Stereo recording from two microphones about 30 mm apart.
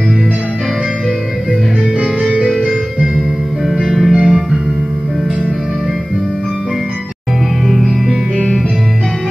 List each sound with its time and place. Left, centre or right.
3.8 s music: centre
4.1 s music: centre
7.6 s music: centre